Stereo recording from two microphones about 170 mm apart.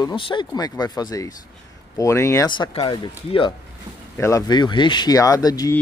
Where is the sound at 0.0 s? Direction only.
30° left (ahead or behind).